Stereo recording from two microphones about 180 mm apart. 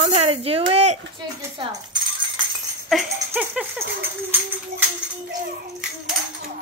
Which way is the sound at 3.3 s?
5° right (ahead or behind).